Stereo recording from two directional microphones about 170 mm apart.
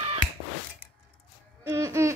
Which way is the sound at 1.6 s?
15° right (ahead or behind).